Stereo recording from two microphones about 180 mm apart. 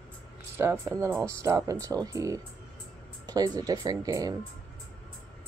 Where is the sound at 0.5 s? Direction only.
10° right (ahead or behind).